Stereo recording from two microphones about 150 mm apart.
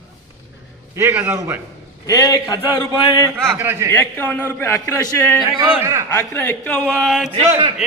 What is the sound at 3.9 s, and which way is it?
A man's voice, 15° left (ahead or behind).